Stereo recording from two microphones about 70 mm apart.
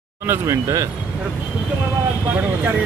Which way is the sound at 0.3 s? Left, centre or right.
Right.